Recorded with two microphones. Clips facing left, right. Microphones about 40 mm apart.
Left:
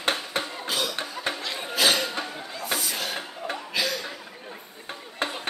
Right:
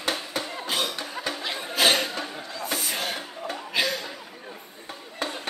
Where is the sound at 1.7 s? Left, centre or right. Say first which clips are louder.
Right 1 dB; right.